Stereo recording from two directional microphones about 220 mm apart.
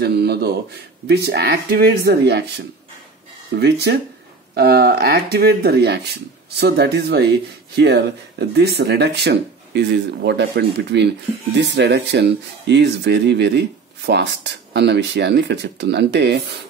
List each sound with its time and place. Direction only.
0.0 s speech: 45° right (ahead or behind)
3.5 s speech: 45° right (ahead or behind)